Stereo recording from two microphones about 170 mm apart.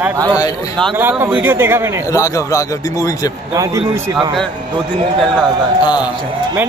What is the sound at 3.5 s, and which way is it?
Speech, 15° right (ahead or behind).